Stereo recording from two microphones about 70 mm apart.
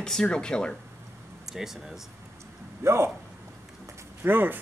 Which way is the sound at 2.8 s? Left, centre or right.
Right.